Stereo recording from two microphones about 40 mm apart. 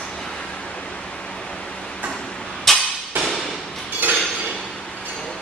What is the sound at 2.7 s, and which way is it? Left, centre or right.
Hammer, centre.